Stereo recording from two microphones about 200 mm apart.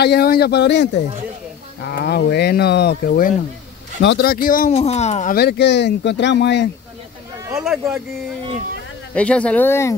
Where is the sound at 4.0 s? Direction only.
55° left (ahead or behind); by 5.3 s 35° left (ahead or behind).